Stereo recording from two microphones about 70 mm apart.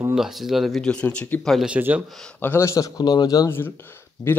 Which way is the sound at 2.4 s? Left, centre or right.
Left.